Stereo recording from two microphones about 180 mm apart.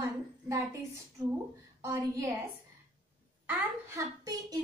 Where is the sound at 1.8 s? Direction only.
20° right (ahead or behind).